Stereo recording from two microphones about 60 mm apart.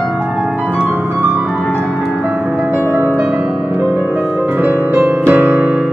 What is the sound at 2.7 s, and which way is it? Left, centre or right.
Music, right.